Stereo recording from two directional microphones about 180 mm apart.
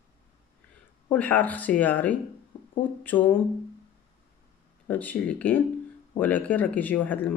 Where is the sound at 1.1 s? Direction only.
10° left (ahead or behind).